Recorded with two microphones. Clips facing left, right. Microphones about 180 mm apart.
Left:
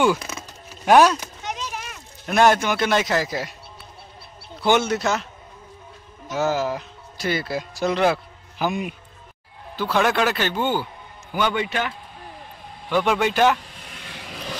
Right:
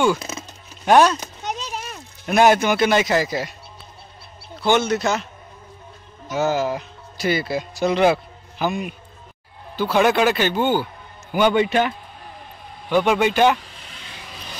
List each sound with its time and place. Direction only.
0.8 s speech: 5° left (ahead or behind)
1.5 s a sound: 35° right (ahead or behind)
2.2 s speech: 10° right (ahead or behind)
4.6 s speech: 5° left (ahead or behind)
6.2 s speech: centre (ahead or behind)
8.5 s a man's voice: 10° left (ahead or behind)
9.8 s speech: 5° right (ahead or behind)
11.3 s a man's voice: 20° right (ahead or behind)
12.9 s speech: centre (ahead or behind)